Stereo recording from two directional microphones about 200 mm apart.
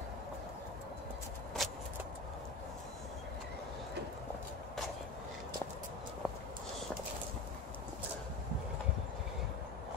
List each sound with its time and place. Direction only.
1.6 s vehicle: centre (ahead or behind)